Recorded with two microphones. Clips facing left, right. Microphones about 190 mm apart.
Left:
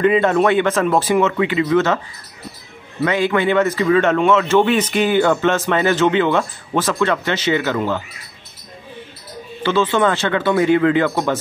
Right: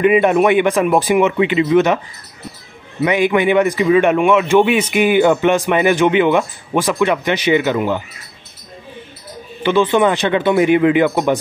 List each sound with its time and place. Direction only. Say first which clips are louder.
0.0 s a man's voice: right 2 dB; 15° right (ahead or behind)
3.0 s a man's voice: right 3 dB; 15° right (ahead or behind)
9.6 s a man's voice: right 3 dB; 15° right (ahead or behind)